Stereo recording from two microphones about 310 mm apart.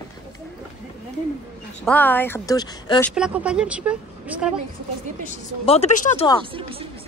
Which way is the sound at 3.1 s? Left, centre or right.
Centre.